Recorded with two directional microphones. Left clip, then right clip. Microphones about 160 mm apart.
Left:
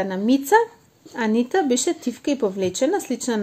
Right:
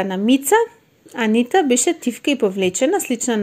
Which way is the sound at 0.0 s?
25° right (ahead or behind).